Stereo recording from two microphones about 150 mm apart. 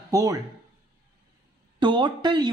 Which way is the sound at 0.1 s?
25° right (ahead or behind).